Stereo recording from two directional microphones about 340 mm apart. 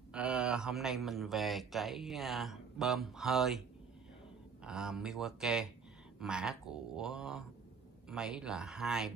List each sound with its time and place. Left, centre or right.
0.1 s speech: centre
4.6 s speech: centre